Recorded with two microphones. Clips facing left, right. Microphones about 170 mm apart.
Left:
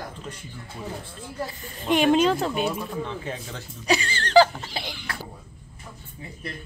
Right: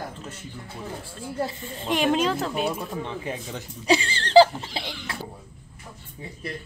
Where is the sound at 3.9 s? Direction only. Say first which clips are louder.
Right 2 dB; 30° right (ahead or behind).